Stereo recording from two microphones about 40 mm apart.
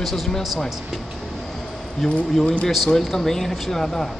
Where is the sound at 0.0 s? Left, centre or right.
Centre.